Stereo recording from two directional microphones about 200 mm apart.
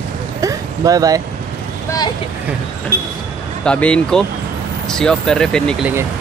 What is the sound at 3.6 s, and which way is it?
Speech, 5° left (ahead or behind).